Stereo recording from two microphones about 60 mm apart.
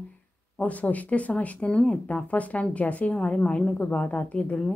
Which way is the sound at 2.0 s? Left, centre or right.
Left.